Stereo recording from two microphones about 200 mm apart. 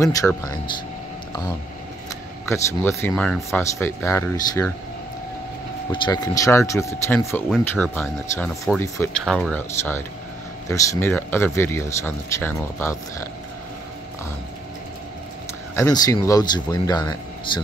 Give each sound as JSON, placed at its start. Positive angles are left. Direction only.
{"t": 0.0, "sound": "speech", "side_deg": 15}
{"t": 2.4, "sound": "speech", "side_deg": 15}
{"t": 3.8, "sound": "speech", "side_deg": 10}
{"t": 5.9, "sound": "speech", "side_deg": 20}
{"t": 9.2, "sound": "speech", "side_deg": -5}
{"t": 9.5, "sound": "speech", "side_deg": 10}
{"t": 15.7, "sound": "speech", "side_deg": 15}